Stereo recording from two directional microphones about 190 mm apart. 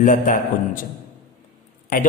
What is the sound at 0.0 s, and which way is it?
Speech, 45° left (ahead or behind).